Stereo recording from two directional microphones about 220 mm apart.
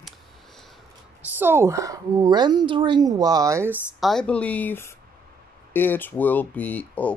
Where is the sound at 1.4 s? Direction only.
10° right (ahead or behind).